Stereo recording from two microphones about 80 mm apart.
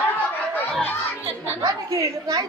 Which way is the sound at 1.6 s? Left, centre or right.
Right.